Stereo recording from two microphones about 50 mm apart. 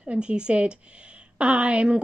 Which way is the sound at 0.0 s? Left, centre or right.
Right.